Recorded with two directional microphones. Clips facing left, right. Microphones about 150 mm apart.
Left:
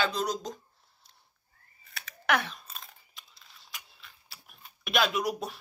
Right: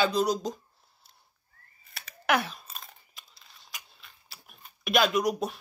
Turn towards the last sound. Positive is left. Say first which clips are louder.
# right 4 dB
turn(degrees=0)  # may be behind; listen again after turning